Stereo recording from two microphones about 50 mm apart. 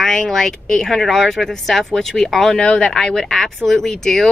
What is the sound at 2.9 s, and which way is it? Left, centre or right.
Speech, centre.